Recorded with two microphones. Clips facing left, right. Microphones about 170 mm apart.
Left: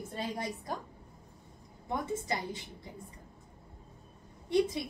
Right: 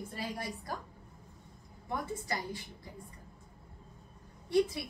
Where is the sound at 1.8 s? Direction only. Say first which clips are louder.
Left 3 dB; 20° left (ahead or behind).